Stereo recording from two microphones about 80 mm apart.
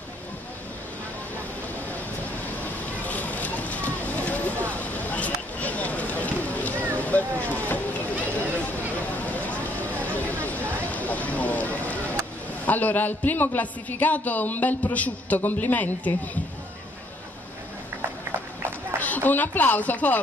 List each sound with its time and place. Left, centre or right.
3.1 s a sound: centre
7.0 s boat: centre
9.2 s vehicle: centre
10.0 s a sound: left
12.6 s a man's voice: left
18.9 s a woman's voice: left